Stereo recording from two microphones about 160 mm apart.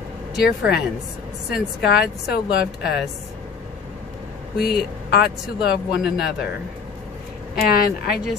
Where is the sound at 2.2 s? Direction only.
90° left.